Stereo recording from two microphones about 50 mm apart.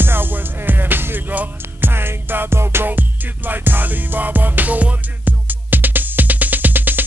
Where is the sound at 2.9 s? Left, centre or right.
Right.